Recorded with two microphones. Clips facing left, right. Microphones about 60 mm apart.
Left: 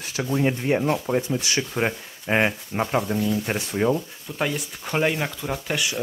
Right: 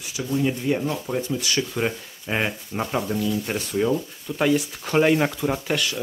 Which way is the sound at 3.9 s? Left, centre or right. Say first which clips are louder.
Right 1 dB; centre.